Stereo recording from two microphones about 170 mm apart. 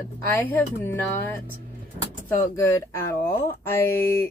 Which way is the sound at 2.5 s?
15° left (ahead or behind).